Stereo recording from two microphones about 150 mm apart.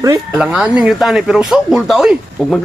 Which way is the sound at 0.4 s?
5° right (ahead or behind).